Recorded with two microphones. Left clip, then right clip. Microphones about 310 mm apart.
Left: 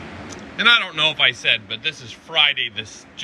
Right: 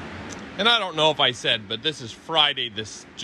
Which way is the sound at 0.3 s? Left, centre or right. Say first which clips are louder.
Left 5 dB; centre.